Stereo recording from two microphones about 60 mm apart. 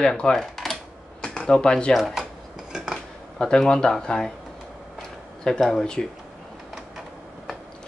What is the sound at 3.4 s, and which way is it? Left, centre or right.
Speech, centre.